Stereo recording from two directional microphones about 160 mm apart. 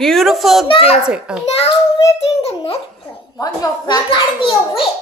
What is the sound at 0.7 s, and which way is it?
Speech, 35° left (ahead or behind).